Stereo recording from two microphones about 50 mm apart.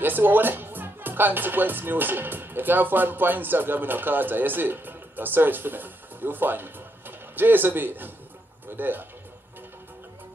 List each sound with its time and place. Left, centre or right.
0.0 s speech: right